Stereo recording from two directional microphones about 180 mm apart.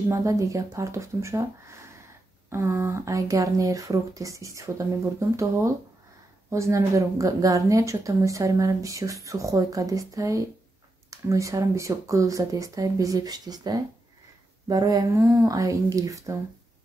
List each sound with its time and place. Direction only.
0.1 s a woman's voice: 15° right (ahead or behind)